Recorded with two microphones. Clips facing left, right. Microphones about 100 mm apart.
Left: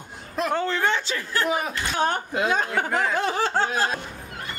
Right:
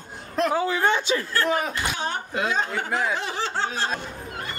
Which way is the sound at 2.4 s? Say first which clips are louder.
Left 3 dB; 50° left (ahead or behind).